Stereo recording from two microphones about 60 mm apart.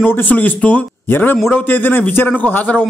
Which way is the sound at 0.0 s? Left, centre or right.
Left.